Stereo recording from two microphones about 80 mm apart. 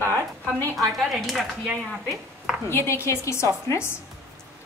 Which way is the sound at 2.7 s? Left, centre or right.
Left.